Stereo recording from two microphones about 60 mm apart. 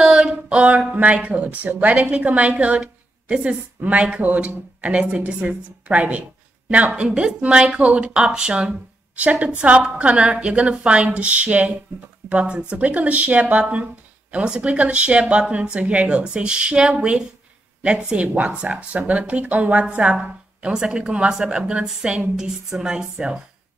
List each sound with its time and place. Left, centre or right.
0.0 s speech: centre